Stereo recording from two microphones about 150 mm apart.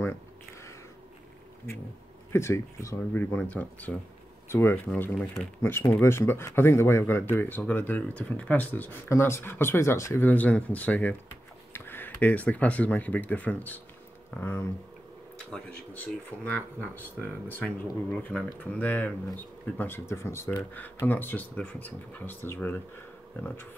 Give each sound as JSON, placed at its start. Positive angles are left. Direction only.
{"t": 2.3, "sound": "speech", "side_deg": 20}